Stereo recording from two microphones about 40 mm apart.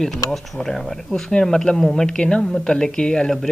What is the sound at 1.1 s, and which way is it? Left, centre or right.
Speech, left.